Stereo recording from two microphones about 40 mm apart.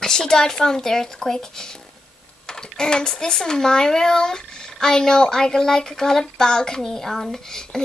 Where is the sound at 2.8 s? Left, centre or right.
Left.